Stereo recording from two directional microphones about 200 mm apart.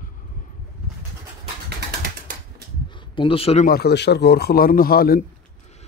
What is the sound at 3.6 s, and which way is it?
A man's voice, 50° left (ahead or behind).